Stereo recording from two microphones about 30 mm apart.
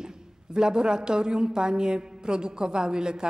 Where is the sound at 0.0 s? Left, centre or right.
Right.